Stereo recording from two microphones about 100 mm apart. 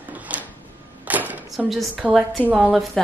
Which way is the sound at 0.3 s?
15° right (ahead or behind).